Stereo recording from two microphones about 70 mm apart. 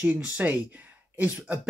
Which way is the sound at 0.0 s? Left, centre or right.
Centre.